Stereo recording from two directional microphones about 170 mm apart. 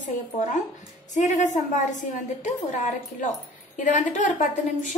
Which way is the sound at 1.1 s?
45° left (ahead or behind).